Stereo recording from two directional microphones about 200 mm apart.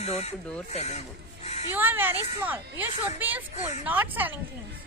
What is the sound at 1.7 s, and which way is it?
Speech, 10° right (ahead or behind).